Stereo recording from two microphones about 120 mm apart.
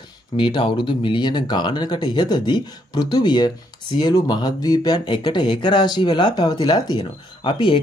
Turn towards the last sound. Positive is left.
turn(degrees=45)  # may be behind; listen again after turning